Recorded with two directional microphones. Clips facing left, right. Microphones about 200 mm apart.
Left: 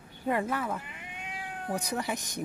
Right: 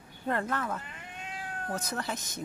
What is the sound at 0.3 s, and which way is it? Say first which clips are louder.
Speech: left 2 dB; 10° left (ahead or behind).